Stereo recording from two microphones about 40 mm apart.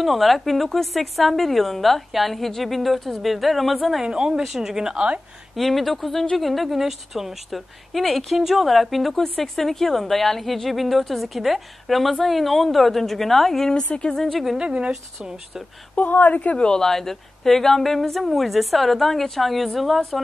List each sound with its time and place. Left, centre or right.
0.0 s a woman's voice: centre
4.0 s speech: centre
5.6 s a woman's voice: centre
14.6 s speech: right
14.9 s speech: centre
16.0 s a woman's voice: left
16.5 s speech: left
16.8 s a woman's voice: centre